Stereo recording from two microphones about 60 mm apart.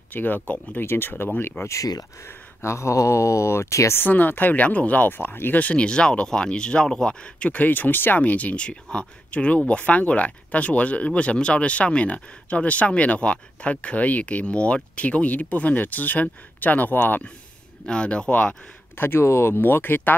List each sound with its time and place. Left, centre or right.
0.1 s speech: left
1.6 s speech: left
2.2 s speech: left
4.1 s speech: left
5.1 s speech: left
17.8 s speech: centre
18.9 s speech: left